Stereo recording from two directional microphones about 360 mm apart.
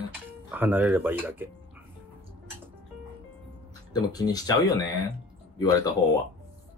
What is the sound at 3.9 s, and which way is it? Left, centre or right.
Speech, centre.